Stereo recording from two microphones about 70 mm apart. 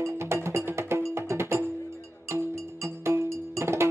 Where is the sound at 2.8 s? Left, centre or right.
Right.